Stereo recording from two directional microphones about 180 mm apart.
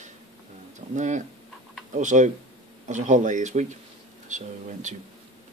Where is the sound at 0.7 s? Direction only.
40° right (ahead or behind).